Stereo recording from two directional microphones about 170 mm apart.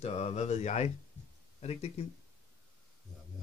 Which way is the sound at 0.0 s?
40° left (ahead or behind).